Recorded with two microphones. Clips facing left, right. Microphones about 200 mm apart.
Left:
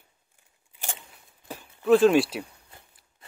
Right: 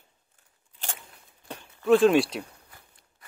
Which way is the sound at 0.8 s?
15° left (ahead or behind).